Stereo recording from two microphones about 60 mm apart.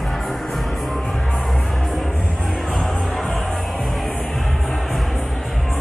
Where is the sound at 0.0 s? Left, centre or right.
Centre.